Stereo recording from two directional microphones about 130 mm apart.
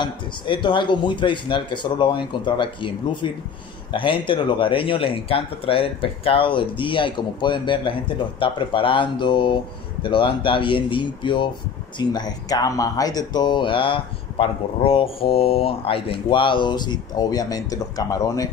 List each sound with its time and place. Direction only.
0.0 s speech: 35° left (ahead or behind)